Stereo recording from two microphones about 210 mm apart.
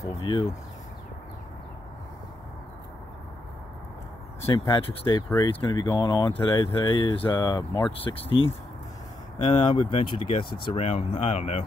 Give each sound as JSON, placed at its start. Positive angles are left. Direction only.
{"t": 0.2, "sound": "speech", "side_deg": 25}
{"t": 4.5, "sound": "speech", "side_deg": 20}
{"t": 9.4, "sound": "speech", "side_deg": 30}